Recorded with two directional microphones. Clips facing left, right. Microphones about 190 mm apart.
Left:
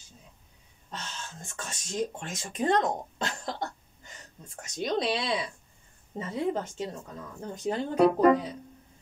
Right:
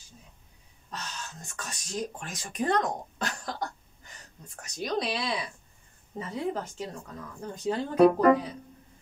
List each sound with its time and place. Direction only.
0.9 s speech: 25° left (ahead or behind)